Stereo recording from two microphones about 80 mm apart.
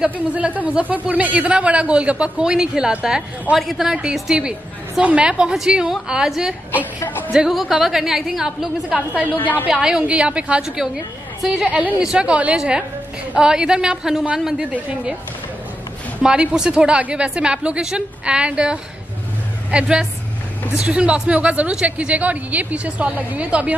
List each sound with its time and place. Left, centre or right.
0.0 s a woman's voice: centre
8.8 s speech: centre
9.4 s a woman's voice: left
9.7 s speech: centre
16.2 s speech: centre